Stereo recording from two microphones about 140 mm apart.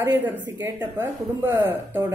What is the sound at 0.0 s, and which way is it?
Speech, 15° right (ahead or behind).